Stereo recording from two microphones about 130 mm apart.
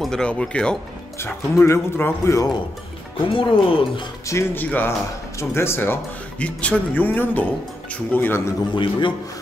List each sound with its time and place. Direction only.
0.0 s speech: 5° left (ahead or behind)
1.2 s speech: 20° left (ahead or behind)
3.3 s speech: 40° left (ahead or behind)
4.3 s speech: 15° left (ahead or behind)
8.7 s a man's voice: 40° left (ahead or behind)